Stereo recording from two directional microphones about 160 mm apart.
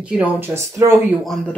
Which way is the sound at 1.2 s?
Centre (ahead or behind).